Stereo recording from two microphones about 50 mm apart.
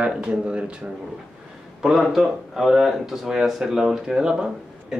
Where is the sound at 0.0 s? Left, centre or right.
Right.